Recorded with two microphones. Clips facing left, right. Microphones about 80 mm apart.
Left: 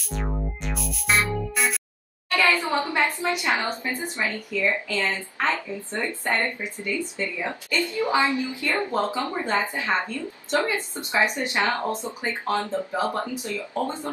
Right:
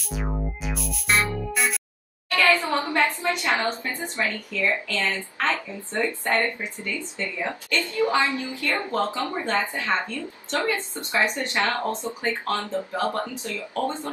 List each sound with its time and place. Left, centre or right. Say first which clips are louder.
0.1 s music: even; centre
2.6 s speech: right 1 dB; centre